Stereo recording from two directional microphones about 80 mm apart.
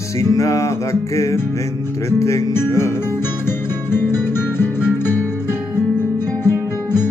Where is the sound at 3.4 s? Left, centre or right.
Left.